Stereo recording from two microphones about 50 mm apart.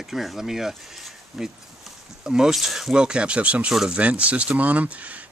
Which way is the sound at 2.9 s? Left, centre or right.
Centre.